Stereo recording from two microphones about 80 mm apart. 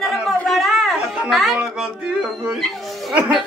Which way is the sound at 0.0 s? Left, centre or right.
Centre.